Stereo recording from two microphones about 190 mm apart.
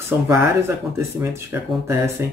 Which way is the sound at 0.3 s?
15° right (ahead or behind).